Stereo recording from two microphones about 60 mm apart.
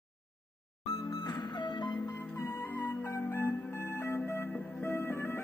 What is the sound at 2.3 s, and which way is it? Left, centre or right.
Music, left.